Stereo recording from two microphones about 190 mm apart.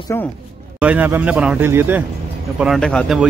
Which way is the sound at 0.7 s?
10° right (ahead or behind).